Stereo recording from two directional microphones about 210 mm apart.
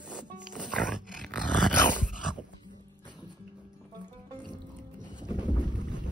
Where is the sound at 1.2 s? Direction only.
5° left (ahead or behind).